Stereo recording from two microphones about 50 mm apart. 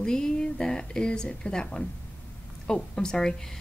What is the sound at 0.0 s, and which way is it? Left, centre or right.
A woman's voice, centre.